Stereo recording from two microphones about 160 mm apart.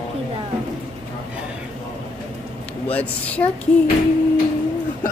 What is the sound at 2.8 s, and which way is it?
Speech, 10° left (ahead or behind).